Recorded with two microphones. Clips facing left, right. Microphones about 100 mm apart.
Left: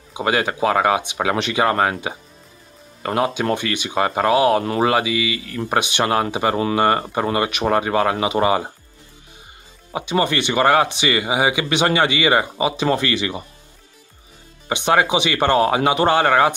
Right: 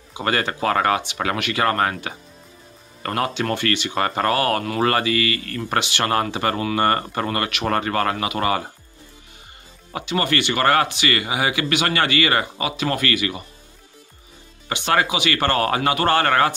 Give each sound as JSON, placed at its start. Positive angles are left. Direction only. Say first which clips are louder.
{"t": 0.1, "sound": "speech", "louder": "left 3 dB", "side_deg": 10}
{"t": 9.9, "sound": "speech", "louder": "left 2 dB", "side_deg": 20}
{"t": 14.7, "sound": "speech", "louder": "left 3 dB", "side_deg": 20}